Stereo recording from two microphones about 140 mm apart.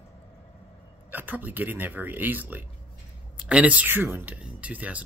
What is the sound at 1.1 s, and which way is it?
Speech, 15° right (ahead or behind).